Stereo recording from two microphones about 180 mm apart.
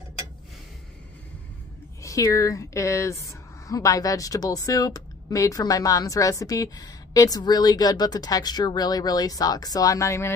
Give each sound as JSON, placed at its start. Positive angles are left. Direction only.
{"t": 2.0, "sound": "speech", "side_deg": 20}